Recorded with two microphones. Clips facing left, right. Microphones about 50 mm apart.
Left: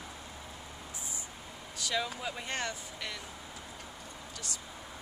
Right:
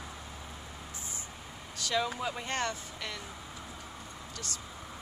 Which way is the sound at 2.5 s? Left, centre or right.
Centre.